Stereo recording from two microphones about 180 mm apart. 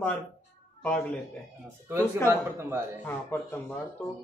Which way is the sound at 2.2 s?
15° right (ahead or behind).